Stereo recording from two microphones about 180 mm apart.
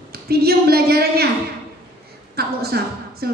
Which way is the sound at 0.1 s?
60° right (ahead or behind).